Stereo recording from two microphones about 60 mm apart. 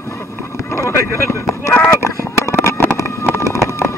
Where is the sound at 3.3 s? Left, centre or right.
Left.